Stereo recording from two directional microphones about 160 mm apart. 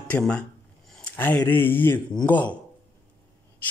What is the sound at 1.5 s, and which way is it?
Speech, 10° left (ahead or behind).